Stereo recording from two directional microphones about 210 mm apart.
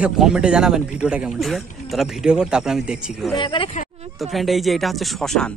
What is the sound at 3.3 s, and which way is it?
Speech, 25° left (ahead or behind).